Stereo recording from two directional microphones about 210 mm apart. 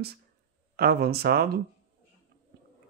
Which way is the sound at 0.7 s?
50° right (ahead or behind).